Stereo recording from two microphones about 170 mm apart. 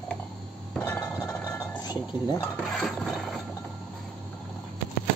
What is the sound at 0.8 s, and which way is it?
Chink, 15° left (ahead or behind).